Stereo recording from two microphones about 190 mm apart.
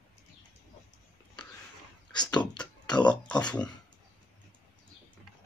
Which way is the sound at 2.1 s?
25° left (ahead or behind).